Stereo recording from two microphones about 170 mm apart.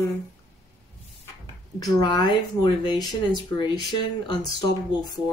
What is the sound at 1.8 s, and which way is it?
Speech, 25° left (ahead or behind).